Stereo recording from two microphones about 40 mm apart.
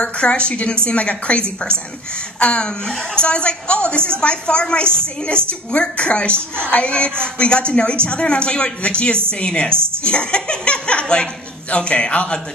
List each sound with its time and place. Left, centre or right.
0.2 s a woman's voice: left
2.4 s a woman's voice: left
6.3 s a woman's voice: right
6.7 s a man's voice: left